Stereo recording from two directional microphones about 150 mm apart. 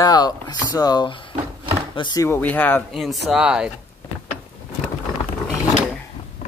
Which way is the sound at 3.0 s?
Centre (ahead or behind).